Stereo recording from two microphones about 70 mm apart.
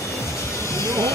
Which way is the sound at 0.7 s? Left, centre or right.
Left.